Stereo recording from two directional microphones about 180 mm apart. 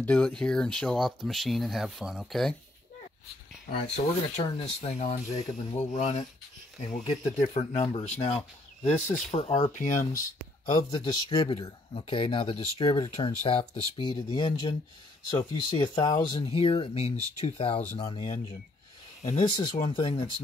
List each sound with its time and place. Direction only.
0.0 s speech: 5° left (ahead or behind)
3.9 s speech: 35° left (ahead or behind)
10.7 s speech: 25° left (ahead or behind)